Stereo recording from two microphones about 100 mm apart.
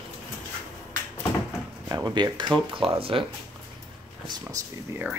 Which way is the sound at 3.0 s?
65° right (ahead or behind).